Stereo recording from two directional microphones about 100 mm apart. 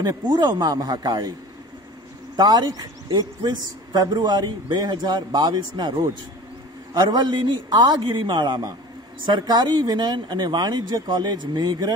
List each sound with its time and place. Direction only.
0.0 s speech: 40° right (ahead or behind)
2.3 s speech: 45° right (ahead or behind)